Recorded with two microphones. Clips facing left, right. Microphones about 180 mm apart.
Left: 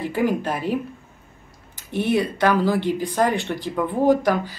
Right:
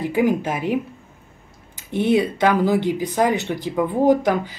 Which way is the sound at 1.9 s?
20° right (ahead or behind).